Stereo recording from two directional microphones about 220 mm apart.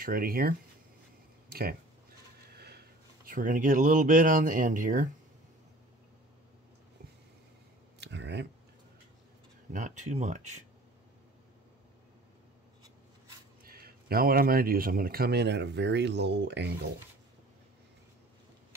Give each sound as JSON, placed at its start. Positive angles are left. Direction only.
{"t": 0.0, "sound": "speech", "side_deg": -40}
{"t": 2.5, "sound": "a sound", "side_deg": -45}
{"t": 3.3, "sound": "speech", "side_deg": -40}
{"t": 8.0, "sound": "a sound", "side_deg": -50}
{"t": 9.7, "sound": "speech", "side_deg": -35}
{"t": 13.7, "sound": "speech", "side_deg": -45}